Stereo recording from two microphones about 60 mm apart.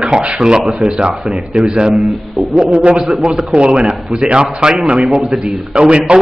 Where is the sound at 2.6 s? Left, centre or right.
Centre.